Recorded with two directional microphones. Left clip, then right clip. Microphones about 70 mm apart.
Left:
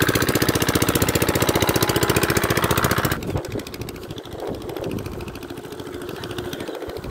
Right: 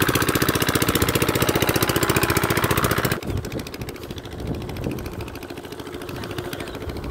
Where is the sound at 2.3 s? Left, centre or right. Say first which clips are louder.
Left 1 dB; right.